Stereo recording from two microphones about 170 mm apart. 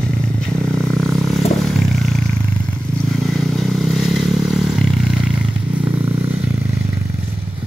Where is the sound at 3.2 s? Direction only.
Centre (ahead or behind).